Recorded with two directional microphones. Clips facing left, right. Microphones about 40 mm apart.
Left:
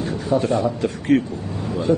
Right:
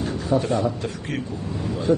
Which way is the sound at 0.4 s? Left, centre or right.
Left.